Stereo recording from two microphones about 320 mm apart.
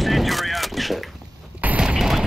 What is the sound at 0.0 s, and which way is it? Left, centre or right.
Gunshot, centre.